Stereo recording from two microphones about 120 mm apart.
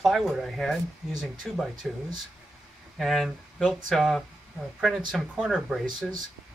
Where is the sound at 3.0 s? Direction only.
Centre (ahead or behind).